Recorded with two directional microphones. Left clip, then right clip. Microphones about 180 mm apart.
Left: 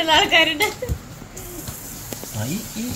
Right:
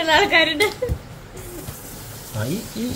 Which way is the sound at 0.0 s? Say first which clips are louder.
Even; 20° right (ahead or behind).